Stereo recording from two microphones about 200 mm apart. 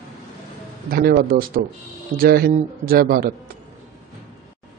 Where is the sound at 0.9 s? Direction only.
45° right (ahead or behind).